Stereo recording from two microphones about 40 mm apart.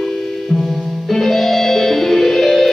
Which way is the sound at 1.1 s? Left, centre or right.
Centre.